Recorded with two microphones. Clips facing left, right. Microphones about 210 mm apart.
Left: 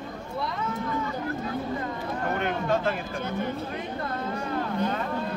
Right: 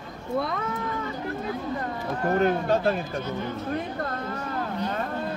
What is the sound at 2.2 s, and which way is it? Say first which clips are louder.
Speech: right 6 dB; 35° right (ahead or behind).